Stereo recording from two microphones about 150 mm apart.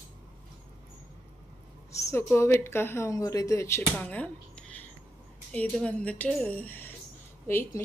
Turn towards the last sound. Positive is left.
turn(degrees=15)  # may be behind; listen again after turning